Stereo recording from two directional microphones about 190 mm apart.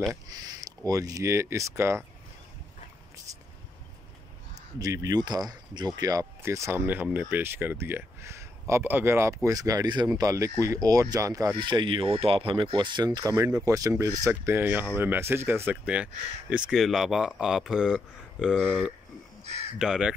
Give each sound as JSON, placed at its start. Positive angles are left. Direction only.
{"t": 0.1, "sound": "speech", "side_deg": -20}
{"t": 4.7, "sound": "speech", "side_deg": -20}